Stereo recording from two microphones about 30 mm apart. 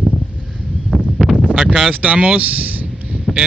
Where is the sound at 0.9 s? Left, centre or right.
Centre.